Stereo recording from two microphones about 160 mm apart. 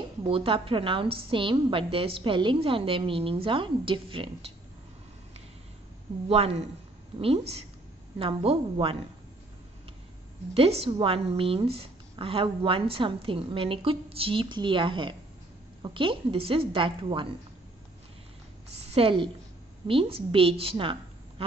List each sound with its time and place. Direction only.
0.3 s a woman's voice: 35° right (ahead or behind)
6.2 s a woman's voice: 40° right (ahead or behind)
10.5 s a woman's voice: 40° right (ahead or behind)
18.8 s a woman's voice: 40° right (ahead or behind)